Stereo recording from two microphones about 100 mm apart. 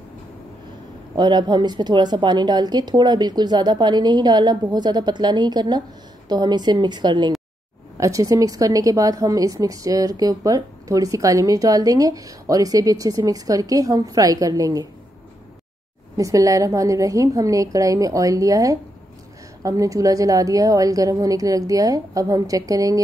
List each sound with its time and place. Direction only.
1.1 s speech: 45° right (ahead or behind)
8.0 s a woman's voice: 35° right (ahead or behind)
16.2 s a woman's voice: 35° right (ahead or behind)